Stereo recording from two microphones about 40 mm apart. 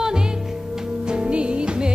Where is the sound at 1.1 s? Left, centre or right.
Right.